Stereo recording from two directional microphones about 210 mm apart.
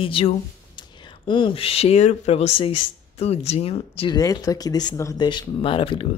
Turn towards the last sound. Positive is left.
turn(degrees=25)  # may be behind; listen again after turning